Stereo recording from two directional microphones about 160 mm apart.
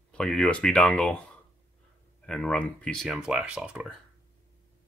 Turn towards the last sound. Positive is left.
turn(degrees=-5)  # may be behind; listen again after turning